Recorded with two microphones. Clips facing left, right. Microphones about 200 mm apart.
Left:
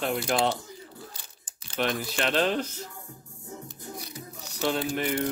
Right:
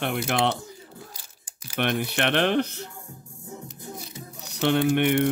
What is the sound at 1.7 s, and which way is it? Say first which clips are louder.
Speech: right 3 dB; 65° right (ahead or behind).